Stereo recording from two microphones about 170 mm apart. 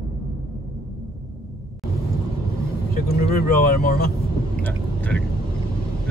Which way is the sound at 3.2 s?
60° left (ahead or behind).